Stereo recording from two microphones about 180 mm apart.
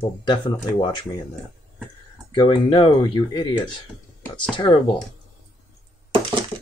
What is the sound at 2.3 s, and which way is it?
Speech, 25° left (ahead or behind).